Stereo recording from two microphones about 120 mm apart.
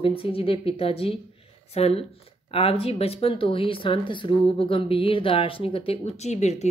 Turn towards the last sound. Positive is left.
turn(degrees=70)  # may be behind; listen again after turning